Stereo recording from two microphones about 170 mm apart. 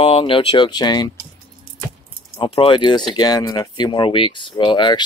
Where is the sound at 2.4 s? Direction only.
30° left (ahead or behind).